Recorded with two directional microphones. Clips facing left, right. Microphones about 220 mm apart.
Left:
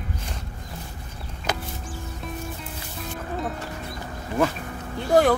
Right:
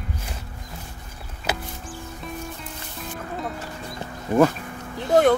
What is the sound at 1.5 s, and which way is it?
Music, 5° right (ahead or behind).